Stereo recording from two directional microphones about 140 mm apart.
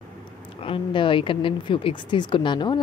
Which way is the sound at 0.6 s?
35° left (ahead or behind).